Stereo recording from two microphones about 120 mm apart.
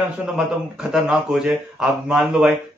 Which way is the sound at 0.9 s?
5° right (ahead or behind).